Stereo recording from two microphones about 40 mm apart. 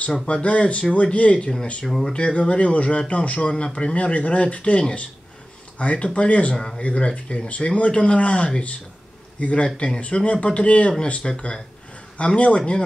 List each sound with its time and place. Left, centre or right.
0.3 s speech: left
1.9 s speech: centre
2.1 s speech: left